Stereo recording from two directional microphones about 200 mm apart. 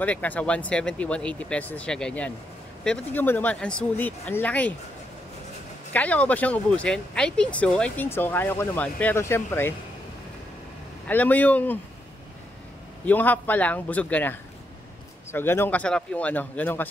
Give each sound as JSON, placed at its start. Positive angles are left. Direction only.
{"t": 0.0, "sound": "speech", "side_deg": 10}
{"t": 5.9, "sound": "speech", "side_deg": 5}
{"t": 11.1, "sound": "speech", "side_deg": 10}
{"t": 13.0, "sound": "speech", "side_deg": 10}